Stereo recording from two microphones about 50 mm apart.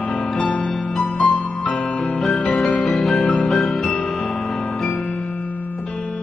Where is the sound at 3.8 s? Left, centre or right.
Centre.